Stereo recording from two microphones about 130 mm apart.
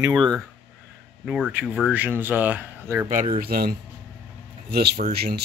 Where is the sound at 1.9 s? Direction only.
15° right (ahead or behind).